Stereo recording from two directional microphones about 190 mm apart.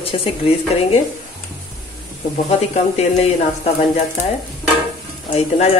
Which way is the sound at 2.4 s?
35° left (ahead or behind).